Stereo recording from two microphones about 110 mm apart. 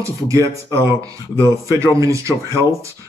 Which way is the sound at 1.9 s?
30° right (ahead or behind).